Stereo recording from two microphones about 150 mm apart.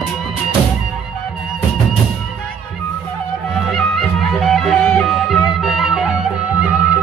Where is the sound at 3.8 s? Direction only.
Centre (ahead or behind).